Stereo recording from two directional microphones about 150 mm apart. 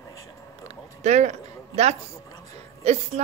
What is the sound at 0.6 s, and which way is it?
A woman's voice, 50° right (ahead or behind).